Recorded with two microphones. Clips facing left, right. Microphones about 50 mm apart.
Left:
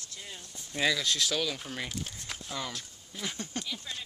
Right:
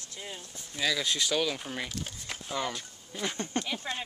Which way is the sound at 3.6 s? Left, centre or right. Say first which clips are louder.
Right 5 dB; right.